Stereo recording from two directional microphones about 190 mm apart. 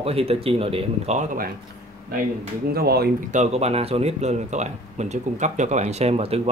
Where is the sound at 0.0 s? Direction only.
30° right (ahead or behind).